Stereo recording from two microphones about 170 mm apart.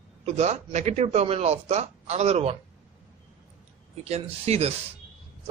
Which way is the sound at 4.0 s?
40° right (ahead or behind).